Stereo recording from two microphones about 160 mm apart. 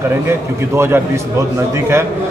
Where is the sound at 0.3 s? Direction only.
15° right (ahead or behind).